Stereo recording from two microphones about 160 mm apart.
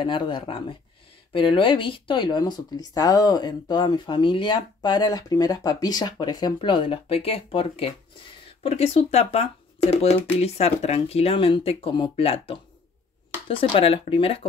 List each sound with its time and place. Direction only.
0.0 s speech: 30° left (ahead or behind)